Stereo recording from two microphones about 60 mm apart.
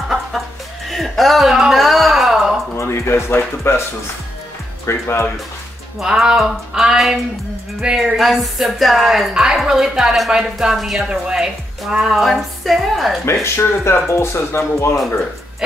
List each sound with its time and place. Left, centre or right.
0.8 s a sound: centre
2.7 s speech: left
4.8 s speech: left
5.9 s a woman's voice: centre
13.2 s speech: left